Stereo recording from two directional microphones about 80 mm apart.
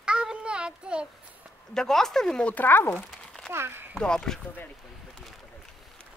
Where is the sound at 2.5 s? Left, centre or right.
Left.